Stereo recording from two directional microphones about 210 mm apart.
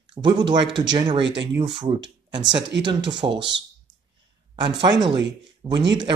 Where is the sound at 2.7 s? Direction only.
55° right (ahead or behind).